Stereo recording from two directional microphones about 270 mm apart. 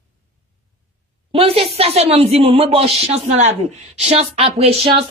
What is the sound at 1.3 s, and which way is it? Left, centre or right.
Speech, right.